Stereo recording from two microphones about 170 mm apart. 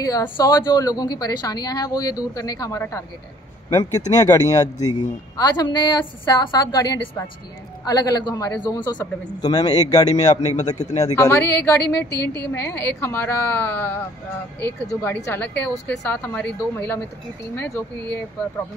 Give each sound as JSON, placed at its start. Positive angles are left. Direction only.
{"t": 0.0, "sound": "a man's voice", "side_deg": 20}
{"t": 10.4, "sound": "a man's voice", "side_deg": 45}
{"t": 11.1, "sound": "a woman's voice", "side_deg": 15}